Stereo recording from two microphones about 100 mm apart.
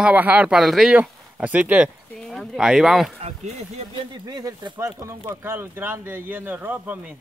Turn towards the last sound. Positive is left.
turn(degrees=-20)  # may be behind; listen again after turning